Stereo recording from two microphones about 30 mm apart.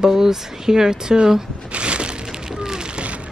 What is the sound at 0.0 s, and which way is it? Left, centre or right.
A woman's voice, centre.